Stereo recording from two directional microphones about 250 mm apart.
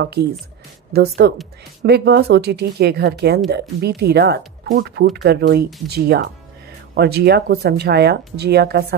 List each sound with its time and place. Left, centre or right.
0.0 s speech: right